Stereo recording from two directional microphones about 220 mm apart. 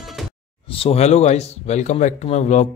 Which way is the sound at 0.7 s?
25° left (ahead or behind).